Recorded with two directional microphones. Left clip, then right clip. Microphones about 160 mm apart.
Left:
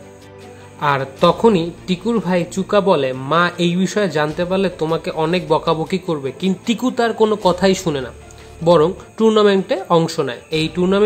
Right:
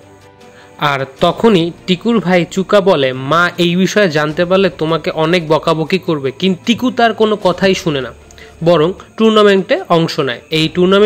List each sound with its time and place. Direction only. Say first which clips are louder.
0.7 s a man's voice: right 3 dB; 20° right (ahead or behind)